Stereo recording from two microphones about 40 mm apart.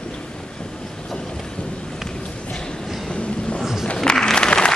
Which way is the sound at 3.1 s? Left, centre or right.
Left.